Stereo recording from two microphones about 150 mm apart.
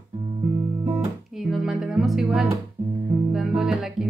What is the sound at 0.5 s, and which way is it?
Guitar, 15° right (ahead or behind).